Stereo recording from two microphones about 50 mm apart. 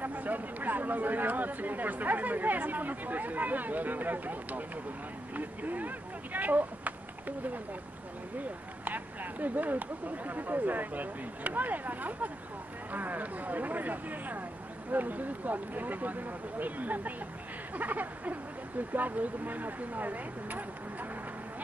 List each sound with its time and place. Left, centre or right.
0.0 s speech: right